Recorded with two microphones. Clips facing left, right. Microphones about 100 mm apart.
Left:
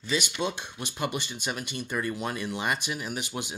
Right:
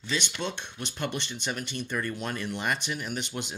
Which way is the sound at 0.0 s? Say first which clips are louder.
Left 3 dB; 10° left (ahead or behind).